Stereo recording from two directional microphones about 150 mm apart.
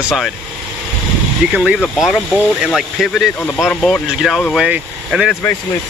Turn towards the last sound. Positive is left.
turn(degrees=-5)  # may be behind; listen again after turning